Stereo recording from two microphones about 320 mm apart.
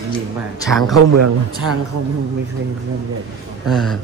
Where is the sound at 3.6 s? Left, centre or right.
Centre.